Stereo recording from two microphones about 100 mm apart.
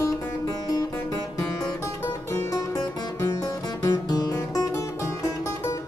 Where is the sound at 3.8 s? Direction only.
40° left (ahead or behind).